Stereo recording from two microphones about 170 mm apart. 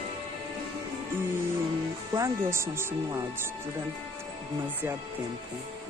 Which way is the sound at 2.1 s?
15° right (ahead or behind).